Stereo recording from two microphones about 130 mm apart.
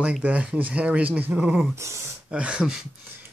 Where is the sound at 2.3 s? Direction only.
10° right (ahead or behind).